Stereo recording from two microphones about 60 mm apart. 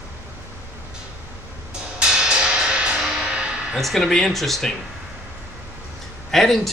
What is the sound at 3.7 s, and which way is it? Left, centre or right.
Speech, centre.